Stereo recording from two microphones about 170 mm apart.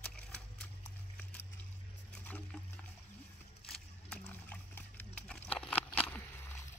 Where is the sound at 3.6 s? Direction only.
5° left (ahead or behind).